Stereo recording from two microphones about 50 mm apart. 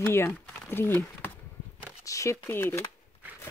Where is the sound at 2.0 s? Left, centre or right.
Left.